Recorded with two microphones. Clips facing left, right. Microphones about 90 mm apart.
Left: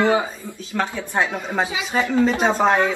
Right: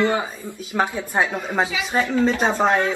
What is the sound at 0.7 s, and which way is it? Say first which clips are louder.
Speech: right 1 dB; 15° right (ahead or behind).